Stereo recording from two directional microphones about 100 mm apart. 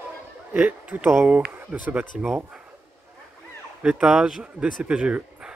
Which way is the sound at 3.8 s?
10° right (ahead or behind).